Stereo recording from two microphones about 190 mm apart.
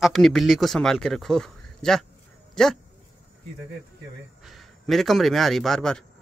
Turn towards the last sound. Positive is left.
turn(degrees=5)  # may be behind; listen again after turning